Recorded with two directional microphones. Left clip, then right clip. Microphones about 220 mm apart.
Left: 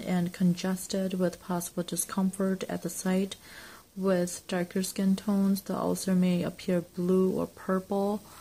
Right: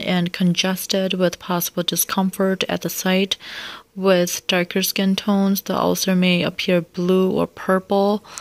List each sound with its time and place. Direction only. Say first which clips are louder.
0.0 s speech: right 10 dB; 35° right (ahead or behind)